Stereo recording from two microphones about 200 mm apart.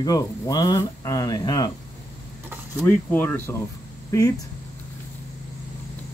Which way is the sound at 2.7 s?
10° left (ahead or behind).